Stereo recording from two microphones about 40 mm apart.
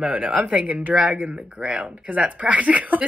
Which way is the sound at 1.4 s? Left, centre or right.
Right.